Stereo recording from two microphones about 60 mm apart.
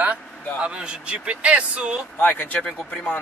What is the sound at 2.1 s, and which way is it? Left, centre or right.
Speech, left.